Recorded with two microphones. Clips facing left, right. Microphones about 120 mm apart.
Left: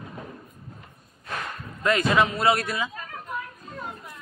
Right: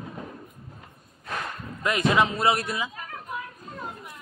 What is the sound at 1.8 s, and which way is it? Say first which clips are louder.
A man's voice: left 1 dB; 20° right (ahead or behind).